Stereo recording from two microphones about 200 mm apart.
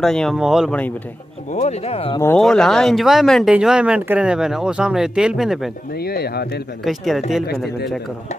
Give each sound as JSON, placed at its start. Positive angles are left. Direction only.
{"t": 0.0, "sound": "speech", "side_deg": 0}
{"t": 1.5, "sound": "speech", "side_deg": 35}
{"t": 2.3, "sound": "speech", "side_deg": 5}
{"t": 5.9, "sound": "speech", "side_deg": 50}
{"t": 6.8, "sound": "speech", "side_deg": 0}